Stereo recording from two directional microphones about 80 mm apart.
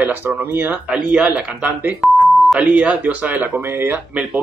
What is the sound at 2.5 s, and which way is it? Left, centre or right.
Speech, centre.